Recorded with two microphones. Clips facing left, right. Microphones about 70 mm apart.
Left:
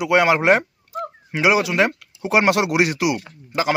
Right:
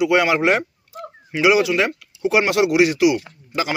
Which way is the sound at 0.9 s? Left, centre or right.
Left.